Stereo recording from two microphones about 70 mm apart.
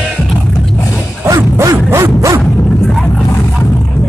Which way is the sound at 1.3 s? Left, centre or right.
Right.